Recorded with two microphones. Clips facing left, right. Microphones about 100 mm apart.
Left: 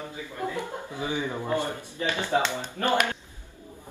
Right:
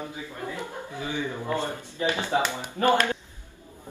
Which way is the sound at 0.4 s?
20° left (ahead or behind).